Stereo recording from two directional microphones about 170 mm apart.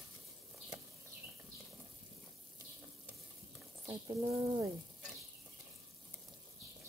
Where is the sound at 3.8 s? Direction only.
15° right (ahead or behind).